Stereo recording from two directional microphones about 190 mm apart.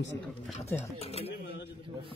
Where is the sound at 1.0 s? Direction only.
30° left (ahead or behind).